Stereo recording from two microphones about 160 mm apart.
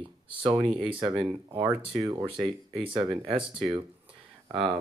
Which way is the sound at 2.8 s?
30° right (ahead or behind).